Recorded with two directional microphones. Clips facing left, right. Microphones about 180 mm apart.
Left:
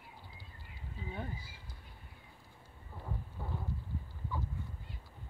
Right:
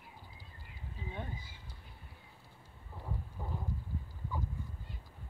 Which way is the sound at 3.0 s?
10° right (ahead or behind).